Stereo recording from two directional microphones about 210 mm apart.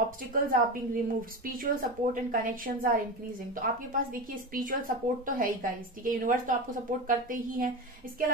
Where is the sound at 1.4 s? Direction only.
40° right (ahead or behind).